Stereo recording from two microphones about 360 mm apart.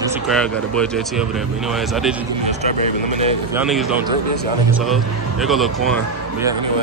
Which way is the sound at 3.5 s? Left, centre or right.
Centre.